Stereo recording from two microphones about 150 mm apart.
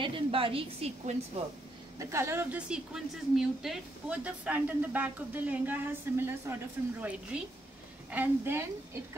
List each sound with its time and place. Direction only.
0.0 s a woman's voice: 35° right (ahead or behind)
2.0 s speech: 20° right (ahead or behind)